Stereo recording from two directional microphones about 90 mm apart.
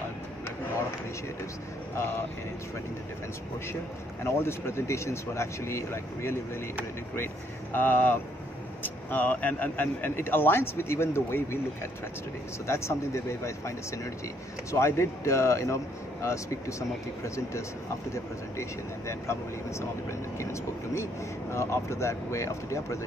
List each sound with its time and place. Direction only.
4.2 s speech: 30° left (ahead or behind)
7.7 s speech: 25° left (ahead or behind)
18.1 s speech: 30° left (ahead or behind)